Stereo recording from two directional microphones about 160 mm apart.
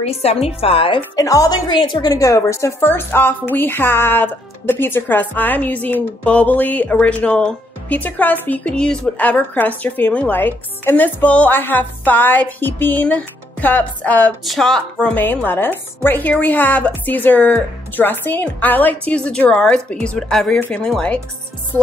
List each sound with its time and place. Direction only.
0.0 s a woman's voice: 40° left (ahead or behind)
1.1 s a woman's voice: 20° left (ahead or behind); by 21.2 s 5° left (ahead or behind)